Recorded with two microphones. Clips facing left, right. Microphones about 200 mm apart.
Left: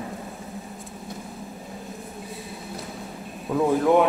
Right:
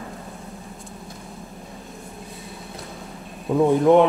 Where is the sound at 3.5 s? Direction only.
15° right (ahead or behind).